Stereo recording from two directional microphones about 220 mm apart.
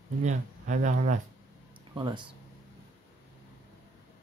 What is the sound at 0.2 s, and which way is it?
Speech, 35° right (ahead or behind).